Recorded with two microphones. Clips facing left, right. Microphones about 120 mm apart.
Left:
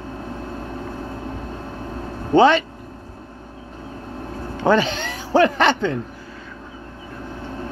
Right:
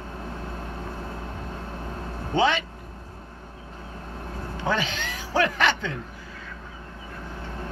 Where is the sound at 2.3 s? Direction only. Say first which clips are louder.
Left 9 dB; 40° left (ahead or behind).